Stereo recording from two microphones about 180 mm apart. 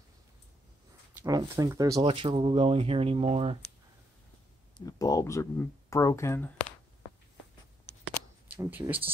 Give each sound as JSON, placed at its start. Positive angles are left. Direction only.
{"t": 1.2, "sound": "speech", "side_deg": -20}
{"t": 2.1, "sound": "speech", "side_deg": -30}
{"t": 4.7, "sound": "speech", "side_deg": 20}
{"t": 8.5, "sound": "speech", "side_deg": -10}